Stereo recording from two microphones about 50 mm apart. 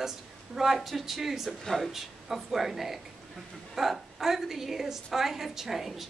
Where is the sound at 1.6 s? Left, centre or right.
Centre.